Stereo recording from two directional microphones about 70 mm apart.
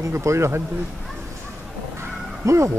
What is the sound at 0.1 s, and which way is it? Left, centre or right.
Speech, right.